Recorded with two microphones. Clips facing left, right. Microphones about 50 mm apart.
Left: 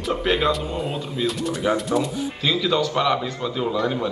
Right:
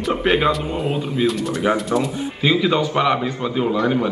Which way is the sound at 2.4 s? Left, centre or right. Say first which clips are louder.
Right 4 dB; right.